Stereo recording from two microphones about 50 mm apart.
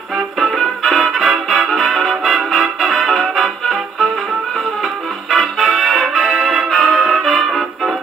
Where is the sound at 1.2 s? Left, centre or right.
Centre.